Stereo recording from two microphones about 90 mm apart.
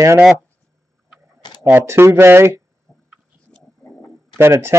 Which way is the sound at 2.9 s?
40° left (ahead or behind).